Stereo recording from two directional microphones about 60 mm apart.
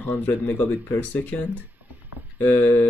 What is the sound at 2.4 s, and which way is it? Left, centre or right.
Speech, left.